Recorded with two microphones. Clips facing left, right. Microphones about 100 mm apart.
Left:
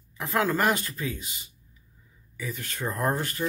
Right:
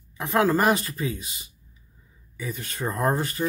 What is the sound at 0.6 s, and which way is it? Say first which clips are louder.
Speech: right 3 dB; 20° right (ahead or behind).